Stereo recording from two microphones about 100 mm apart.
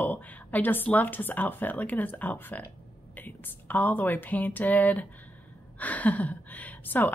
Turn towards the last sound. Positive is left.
turn(degrees=20)  # may be behind; listen again after turning